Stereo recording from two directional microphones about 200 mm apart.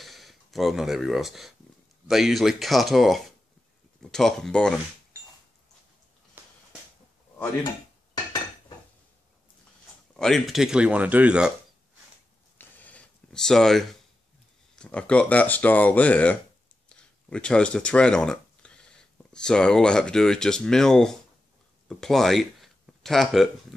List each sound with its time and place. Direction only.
0.0 s speech: centre (ahead or behind)
6.4 s a sound: 10° right (ahead or behind)
7.6 s dishes: 20° left (ahead or behind)
10.1 s speech: 5° left (ahead or behind)
12.5 s a sound: 10° left (ahead or behind)
14.8 s speech: 5° left (ahead or behind)